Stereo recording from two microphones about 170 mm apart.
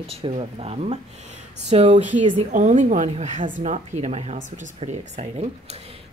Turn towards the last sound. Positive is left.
turn(degrees=-40)  # may be behind; listen again after turning